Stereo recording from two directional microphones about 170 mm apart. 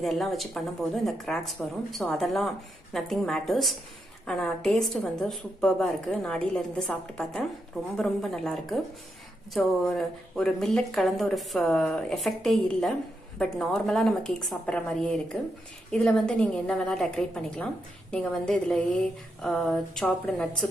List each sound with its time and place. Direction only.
0.0 s speech: centre (ahead or behind)